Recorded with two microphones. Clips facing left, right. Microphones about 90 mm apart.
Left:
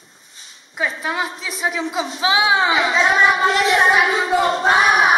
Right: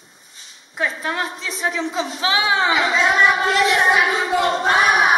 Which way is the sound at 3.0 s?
Centre (ahead or behind).